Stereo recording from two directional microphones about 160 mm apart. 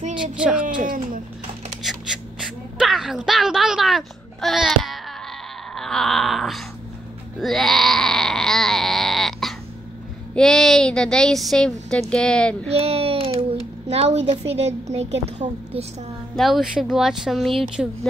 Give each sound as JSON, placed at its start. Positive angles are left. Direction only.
{"t": 0.4, "sound": "speech", "side_deg": -5}
{"t": 0.8, "sound": "speech", "side_deg": -60}
{"t": 1.9, "sound": "gasp", "side_deg": -5}
{"t": 5.8, "sound": "a sound", "side_deg": 5}
{"t": 10.3, "sound": "speech", "side_deg": 5}
{"t": 12.7, "sound": "a sound", "side_deg": -40}
{"t": 13.8, "sound": "a woman's voice", "side_deg": -40}
{"t": 16.3, "sound": "speech", "side_deg": 0}